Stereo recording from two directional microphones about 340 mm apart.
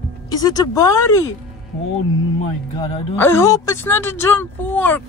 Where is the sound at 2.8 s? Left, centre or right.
Centre.